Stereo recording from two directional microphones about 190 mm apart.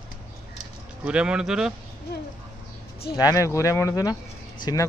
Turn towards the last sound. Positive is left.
turn(degrees=20)  # may be behind; listen again after turning